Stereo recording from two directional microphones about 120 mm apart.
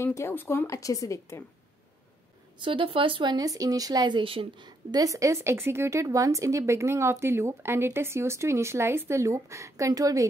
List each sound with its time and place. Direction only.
0.0 s speech: 20° left (ahead or behind)
2.6 s speech: 45° right (ahead or behind); by 10.2 s 30° right (ahead or behind)